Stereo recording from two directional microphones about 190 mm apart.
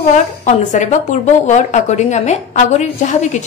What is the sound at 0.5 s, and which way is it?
A woman's voice, 40° left (ahead or behind).